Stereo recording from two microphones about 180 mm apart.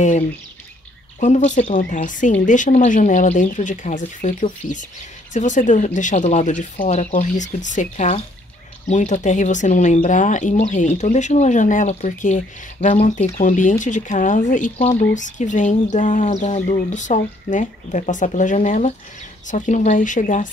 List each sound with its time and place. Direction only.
1.2 s speech: 40° left (ahead or behind)